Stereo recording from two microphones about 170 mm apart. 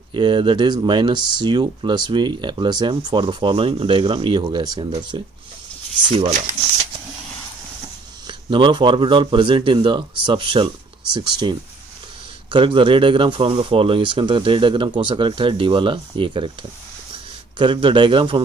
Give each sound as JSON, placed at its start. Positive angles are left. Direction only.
{"t": 0.1, "sound": "speech", "side_deg": -30}
{"t": 8.3, "sound": "speech", "side_deg": -30}
{"t": 17.6, "sound": "speech", "side_deg": -30}